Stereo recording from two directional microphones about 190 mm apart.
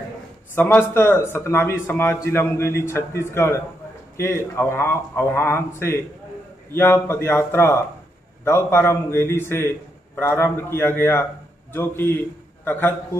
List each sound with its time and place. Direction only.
0.6 s a man's voice: 10° left (ahead or behind)